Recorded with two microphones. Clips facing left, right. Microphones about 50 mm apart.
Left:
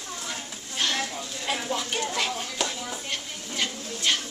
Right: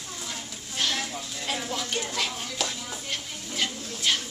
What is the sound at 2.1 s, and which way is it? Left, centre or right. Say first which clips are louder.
Music: left 2 dB; centre.